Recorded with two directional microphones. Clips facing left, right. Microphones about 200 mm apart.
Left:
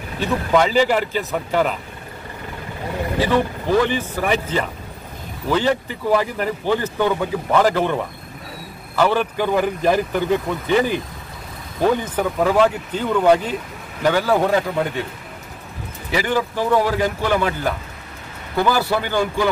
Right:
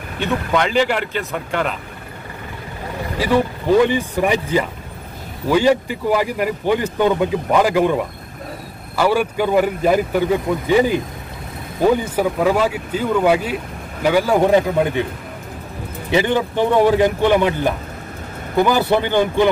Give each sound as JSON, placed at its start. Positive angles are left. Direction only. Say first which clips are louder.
{"t": 0.2, "sound": "speech", "louder": "left 1 dB", "side_deg": 5}
{"t": 3.2, "sound": "speech", "louder": "right 2 dB", "side_deg": -10}
{"t": 16.1, "sound": "speech", "louder": "right 4 dB", "side_deg": -25}